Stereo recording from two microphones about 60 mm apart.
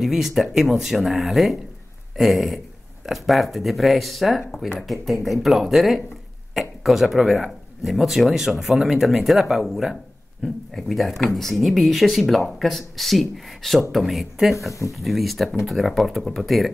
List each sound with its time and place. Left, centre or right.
0.0 s speech: centre
10.4 s speech: centre
14.7 s speech: left
15.0 s speech: centre